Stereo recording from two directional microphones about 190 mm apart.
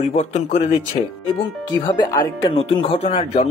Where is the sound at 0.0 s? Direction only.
35° left (ahead or behind).